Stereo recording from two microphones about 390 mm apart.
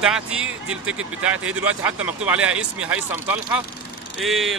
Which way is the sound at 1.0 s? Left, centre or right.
Right.